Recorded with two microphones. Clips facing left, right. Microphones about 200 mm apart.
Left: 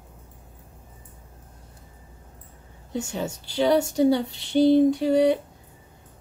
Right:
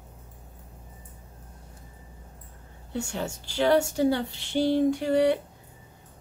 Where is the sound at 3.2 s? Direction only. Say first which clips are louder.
Left 2 dB; 15° left (ahead or behind).